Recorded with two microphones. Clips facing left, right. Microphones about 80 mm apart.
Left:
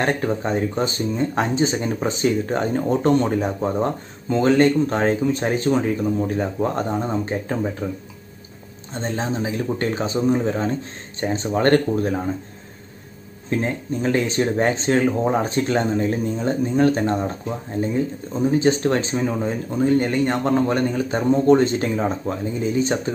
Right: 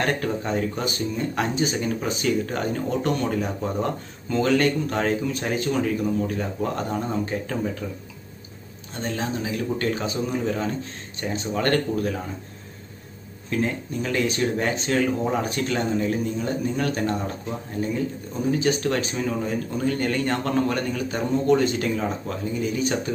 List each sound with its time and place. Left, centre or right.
0.0 s speech: left
8.9 s speech: left
13.5 s speech: left